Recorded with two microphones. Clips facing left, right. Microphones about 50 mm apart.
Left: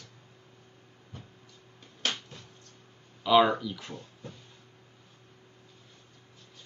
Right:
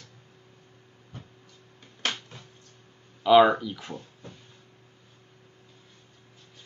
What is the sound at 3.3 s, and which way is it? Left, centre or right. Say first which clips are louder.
Speech: right 5 dB; centre.